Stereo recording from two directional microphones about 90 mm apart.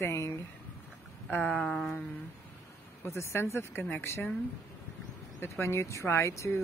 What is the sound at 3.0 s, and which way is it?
Speech, 30° left (ahead or behind).